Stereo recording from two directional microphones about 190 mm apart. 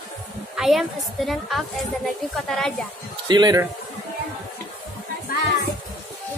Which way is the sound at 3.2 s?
20° right (ahead or behind).